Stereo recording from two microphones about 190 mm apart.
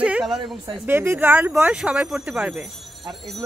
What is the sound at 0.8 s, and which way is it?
Speech, 10° right (ahead or behind).